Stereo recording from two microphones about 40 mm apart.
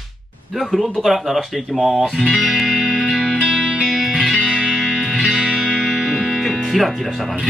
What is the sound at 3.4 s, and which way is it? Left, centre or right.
Music, centre.